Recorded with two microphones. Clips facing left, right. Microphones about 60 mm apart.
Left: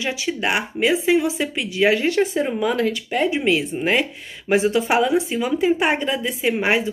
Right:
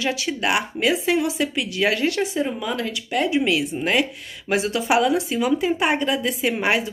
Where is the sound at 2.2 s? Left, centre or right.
Left.